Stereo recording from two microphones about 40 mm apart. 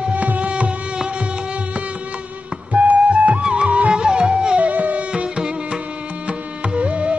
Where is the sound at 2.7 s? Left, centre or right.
Right.